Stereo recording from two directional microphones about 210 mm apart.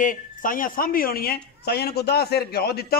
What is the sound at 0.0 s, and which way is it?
Speech, 40° left (ahead or behind).